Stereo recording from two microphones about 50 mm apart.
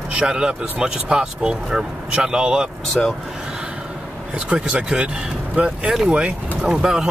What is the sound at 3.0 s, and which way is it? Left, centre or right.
Speech, centre.